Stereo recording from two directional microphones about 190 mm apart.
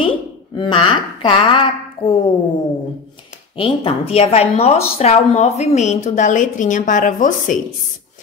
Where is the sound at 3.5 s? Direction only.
30° left (ahead or behind).